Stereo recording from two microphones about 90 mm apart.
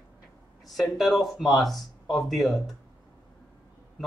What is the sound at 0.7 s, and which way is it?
Speech, centre (ahead or behind).